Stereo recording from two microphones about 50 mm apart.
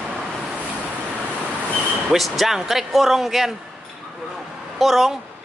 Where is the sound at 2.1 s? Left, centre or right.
Centre.